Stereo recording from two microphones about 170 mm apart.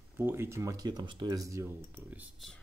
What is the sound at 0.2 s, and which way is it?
Speech, 15° right (ahead or behind).